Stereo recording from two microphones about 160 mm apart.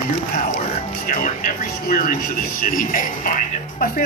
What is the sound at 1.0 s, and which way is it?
Speech, 60° left (ahead or behind).